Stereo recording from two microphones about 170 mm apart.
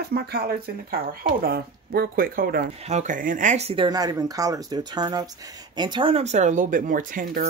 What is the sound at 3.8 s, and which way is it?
Speech, 20° right (ahead or behind).